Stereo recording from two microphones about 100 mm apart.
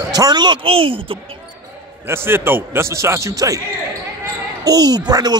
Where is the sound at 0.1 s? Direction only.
40° right (ahead or behind).